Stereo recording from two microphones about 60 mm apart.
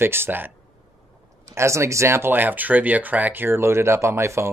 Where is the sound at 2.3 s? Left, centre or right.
Right.